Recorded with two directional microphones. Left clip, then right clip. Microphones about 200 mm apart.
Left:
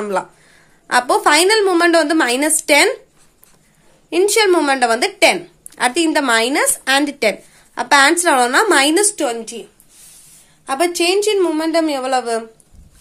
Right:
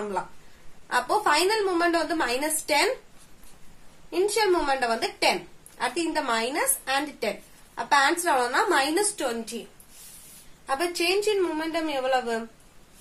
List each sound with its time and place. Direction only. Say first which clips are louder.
0.8 s a woman's voice: left 10 dB; 35° left (ahead or behind)
4.1 s a woman's voice: left 10 dB; 35° left (ahead or behind)
10.6 s a woman's voice: left 9 dB; 30° left (ahead or behind)